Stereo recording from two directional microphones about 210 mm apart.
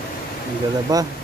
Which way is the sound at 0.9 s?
20° right (ahead or behind).